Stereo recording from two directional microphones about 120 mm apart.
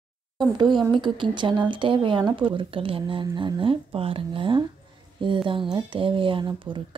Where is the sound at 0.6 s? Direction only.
40° right (ahead or behind).